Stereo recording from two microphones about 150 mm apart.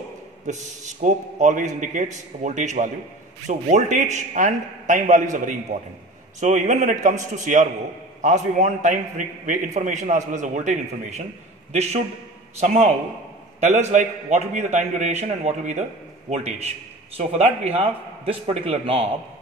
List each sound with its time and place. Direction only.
0.5 s a man's voice: 50° right (ahead or behind)